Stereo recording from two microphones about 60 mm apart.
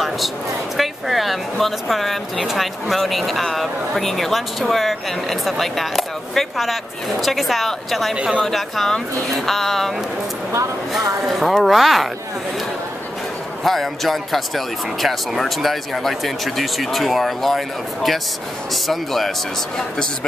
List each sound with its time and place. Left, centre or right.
0.7 s speech: centre
8.1 s speech: centre
8.5 s speech: centre
13.7 s speech: centre